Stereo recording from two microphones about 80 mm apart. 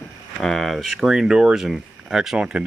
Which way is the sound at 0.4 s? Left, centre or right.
Centre.